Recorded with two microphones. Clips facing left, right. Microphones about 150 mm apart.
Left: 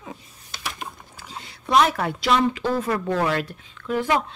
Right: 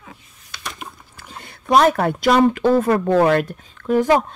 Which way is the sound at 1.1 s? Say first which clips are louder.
Even; 55° right (ahead or behind).